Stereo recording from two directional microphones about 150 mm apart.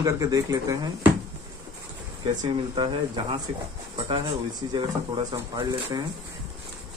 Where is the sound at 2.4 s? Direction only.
35° right (ahead or behind).